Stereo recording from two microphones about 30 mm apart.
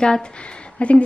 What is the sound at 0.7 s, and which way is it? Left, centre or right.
Speech, left.